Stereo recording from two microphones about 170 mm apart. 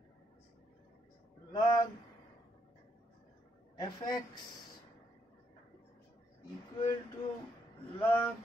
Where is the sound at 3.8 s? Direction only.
25° left (ahead or behind).